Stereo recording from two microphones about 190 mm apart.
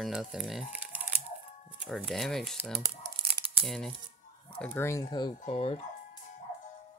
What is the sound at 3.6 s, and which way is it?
Speech, centre (ahead or behind).